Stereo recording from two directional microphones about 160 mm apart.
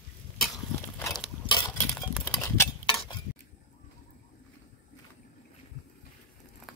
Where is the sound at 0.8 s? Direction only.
20° left (ahead or behind).